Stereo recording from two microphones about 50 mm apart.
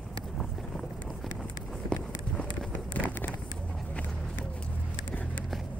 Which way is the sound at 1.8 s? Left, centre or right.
Left.